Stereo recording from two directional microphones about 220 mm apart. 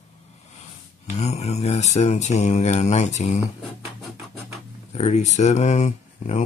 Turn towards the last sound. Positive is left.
turn(degrees=30)  # may be behind; listen again after turning